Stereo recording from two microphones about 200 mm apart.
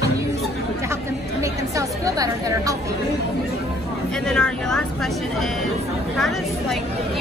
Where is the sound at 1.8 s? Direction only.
15° right (ahead or behind).